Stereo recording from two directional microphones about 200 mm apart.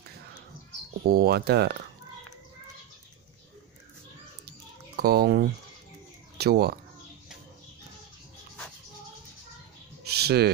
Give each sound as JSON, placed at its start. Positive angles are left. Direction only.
{"t": 1.0, "sound": "speech", "side_deg": -50}
{"t": 4.5, "sound": "typing", "side_deg": -50}
{"t": 6.3, "sound": "speech", "side_deg": -55}
{"t": 10.0, "sound": "a sound", "side_deg": -55}